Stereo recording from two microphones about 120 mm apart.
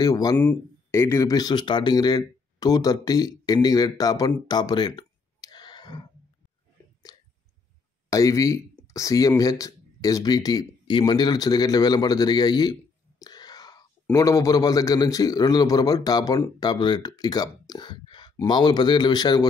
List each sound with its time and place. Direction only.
0.0 s speech: 30° left (ahead or behind)
0.4 s speech: 20° left (ahead or behind); by 6.0 s 35° left (ahead or behind)
7.1 s chewing: 40° left (ahead or behind)
8.1 s a man's voice: 25° left (ahead or behind)
13.2 s a sound: 35° left (ahead or behind)
14.1 s a man's voice: 25° left (ahead or behind)